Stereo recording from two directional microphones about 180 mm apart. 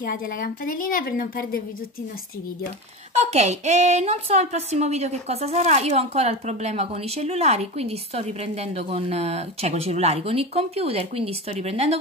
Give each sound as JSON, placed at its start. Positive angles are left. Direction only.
{"t": 0.0, "sound": "a woman's voice", "side_deg": 50}
{"t": 3.3, "sound": "speech", "side_deg": -40}